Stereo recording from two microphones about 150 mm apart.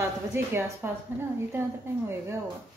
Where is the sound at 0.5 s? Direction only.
15° right (ahead or behind).